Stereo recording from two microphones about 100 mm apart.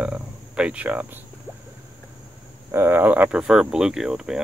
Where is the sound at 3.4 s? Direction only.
5° right (ahead or behind).